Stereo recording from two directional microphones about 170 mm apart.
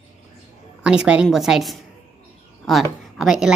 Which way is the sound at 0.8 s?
5° right (ahead or behind).